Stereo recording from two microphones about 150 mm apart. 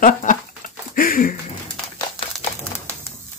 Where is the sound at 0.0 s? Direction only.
60° left (ahead or behind).